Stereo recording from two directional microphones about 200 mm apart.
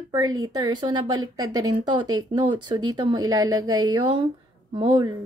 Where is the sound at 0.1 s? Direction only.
20° right (ahead or behind).